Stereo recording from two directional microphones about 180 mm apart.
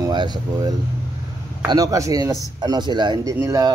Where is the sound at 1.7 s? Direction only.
20° right (ahead or behind).